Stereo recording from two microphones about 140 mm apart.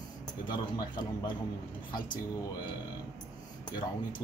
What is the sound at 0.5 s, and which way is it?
Speech, 35° left (ahead or behind).